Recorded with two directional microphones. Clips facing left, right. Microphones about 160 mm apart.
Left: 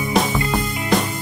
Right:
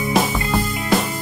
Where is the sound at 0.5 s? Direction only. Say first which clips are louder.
Right 4 dB; centre (ahead or behind).